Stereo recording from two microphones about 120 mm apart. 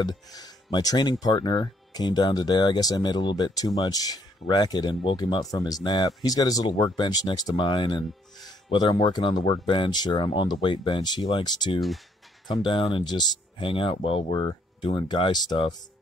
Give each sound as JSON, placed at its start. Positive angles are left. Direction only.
{"t": 0.0, "sound": "speech", "side_deg": 35}